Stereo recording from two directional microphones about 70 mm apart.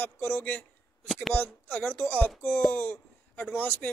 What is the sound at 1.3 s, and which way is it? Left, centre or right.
Speech, left.